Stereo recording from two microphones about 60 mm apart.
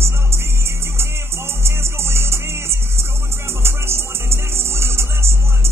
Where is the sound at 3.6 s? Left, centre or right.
Right.